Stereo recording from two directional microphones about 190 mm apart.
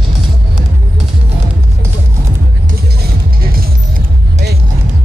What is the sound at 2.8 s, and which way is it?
Music, 55° right (ahead or behind).